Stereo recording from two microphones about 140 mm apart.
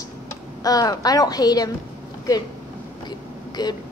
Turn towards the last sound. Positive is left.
turn(degrees=30)  # may be behind; listen again after turning